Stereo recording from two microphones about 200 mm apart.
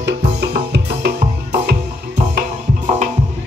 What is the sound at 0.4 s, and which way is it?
Music, 55° right (ahead or behind).